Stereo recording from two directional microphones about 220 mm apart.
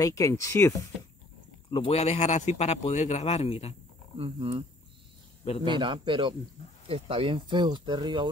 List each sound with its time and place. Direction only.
0.0 s speech: 15° left (ahead or behind)
1.7 s speech: 25° left (ahead or behind)
4.2 s speech: 25° right (ahead or behind)
5.8 s speech: 20° right (ahead or behind)